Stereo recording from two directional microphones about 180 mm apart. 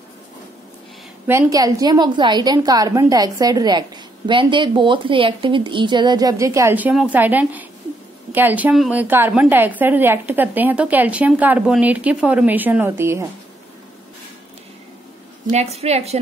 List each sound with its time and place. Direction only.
1.2 s a woman's voice: 15° right (ahead or behind)
15.5 s a woman's voice: 35° right (ahead or behind)